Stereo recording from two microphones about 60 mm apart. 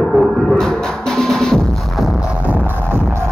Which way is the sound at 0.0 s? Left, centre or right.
Centre.